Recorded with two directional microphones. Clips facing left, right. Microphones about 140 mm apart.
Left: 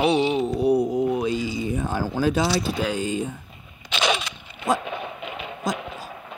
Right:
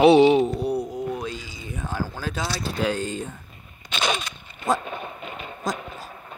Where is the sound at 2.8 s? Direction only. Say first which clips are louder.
Left 1 dB; 5° left (ahead or behind).